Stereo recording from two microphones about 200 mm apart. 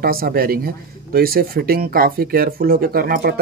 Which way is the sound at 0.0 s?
50° right (ahead or behind).